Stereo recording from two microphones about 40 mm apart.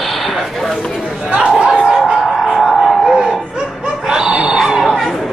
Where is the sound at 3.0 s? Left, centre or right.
Centre.